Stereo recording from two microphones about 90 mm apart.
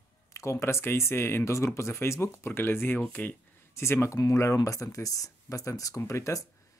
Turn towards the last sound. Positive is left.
turn(degrees=35)  # may be behind; listen again after turning